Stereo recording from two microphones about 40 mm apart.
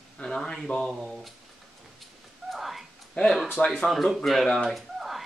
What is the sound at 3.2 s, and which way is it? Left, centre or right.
Speech, left.